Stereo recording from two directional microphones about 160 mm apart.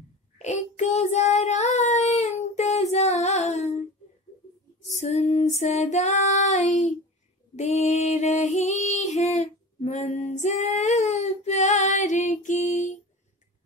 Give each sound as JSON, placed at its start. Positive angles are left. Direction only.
{"t": 0.4, "sound": "child singing", "side_deg": 45}
{"t": 4.9, "sound": "female singing", "side_deg": 45}
{"t": 7.5, "sound": "music", "side_deg": 45}